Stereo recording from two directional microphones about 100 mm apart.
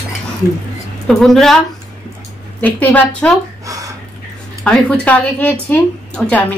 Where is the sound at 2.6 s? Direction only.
15° left (ahead or behind).